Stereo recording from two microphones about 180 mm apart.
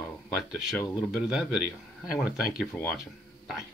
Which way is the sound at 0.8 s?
Centre (ahead or behind).